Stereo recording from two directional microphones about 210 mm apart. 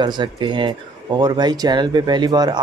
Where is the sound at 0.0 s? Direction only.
20° right (ahead or behind).